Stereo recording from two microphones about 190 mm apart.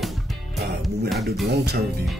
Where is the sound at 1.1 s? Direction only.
Centre (ahead or behind).